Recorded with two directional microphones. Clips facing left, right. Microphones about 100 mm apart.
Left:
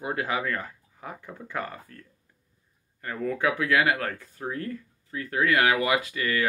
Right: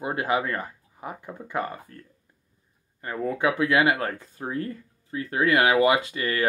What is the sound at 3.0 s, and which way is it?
Speech, 25° right (ahead or behind).